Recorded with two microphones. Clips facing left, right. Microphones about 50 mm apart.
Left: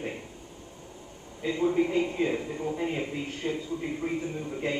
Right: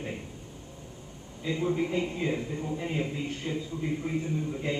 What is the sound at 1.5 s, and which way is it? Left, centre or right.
A man's voice, centre.